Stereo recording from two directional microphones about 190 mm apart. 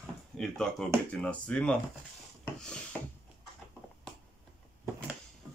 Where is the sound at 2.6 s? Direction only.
5° left (ahead or behind).